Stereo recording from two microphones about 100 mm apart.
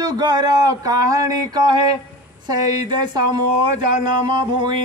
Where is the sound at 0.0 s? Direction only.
40° right (ahead or behind).